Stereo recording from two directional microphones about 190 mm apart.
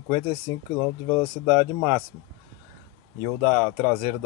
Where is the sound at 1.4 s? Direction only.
20° right (ahead or behind).